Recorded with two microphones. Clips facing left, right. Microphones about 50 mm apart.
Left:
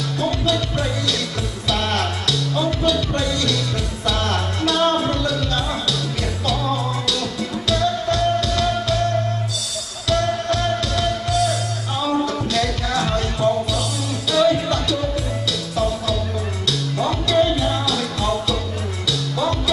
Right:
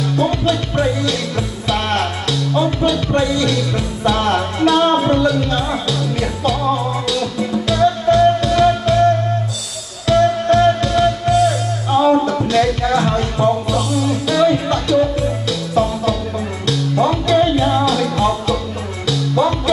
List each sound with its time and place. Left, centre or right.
0.0 s music: right
10.0 s music: right